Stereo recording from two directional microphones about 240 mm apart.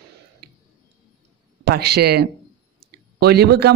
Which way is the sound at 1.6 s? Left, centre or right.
Right.